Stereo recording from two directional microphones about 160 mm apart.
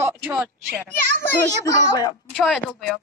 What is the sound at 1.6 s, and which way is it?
Speech, 20° left (ahead or behind).